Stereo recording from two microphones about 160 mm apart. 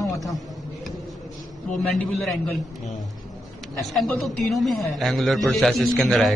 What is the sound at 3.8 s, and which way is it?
A man's voice, centre (ahead or behind).